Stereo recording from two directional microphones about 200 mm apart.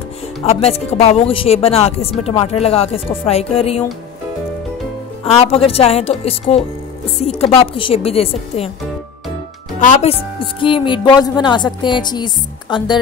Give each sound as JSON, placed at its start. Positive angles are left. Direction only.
{"t": 0.4, "sound": "speech", "side_deg": 30}
{"t": 5.2, "sound": "a woman's voice", "side_deg": 30}
{"t": 9.8, "sound": "a woman's voice", "side_deg": 35}